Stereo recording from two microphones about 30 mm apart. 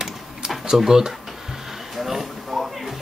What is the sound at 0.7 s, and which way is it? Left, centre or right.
Speech, centre.